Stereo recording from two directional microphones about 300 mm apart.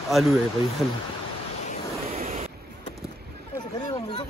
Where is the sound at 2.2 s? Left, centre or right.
Right.